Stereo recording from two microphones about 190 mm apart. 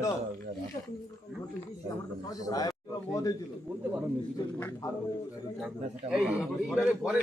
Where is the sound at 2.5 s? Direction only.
20° left (ahead or behind).